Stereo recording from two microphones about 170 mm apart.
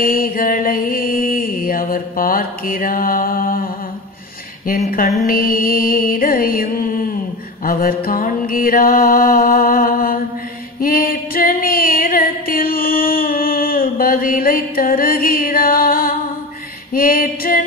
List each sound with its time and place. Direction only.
0.1 s mantra: 55° left (ahead or behind)
10.8 s female singing: 55° left (ahead or behind)
16.9 s mantra: 55° left (ahead or behind)